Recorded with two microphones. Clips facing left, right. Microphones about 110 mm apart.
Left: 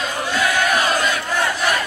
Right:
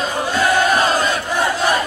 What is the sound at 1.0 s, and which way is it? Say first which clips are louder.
Crowd: right 2 dB; 30° right (ahead or behind).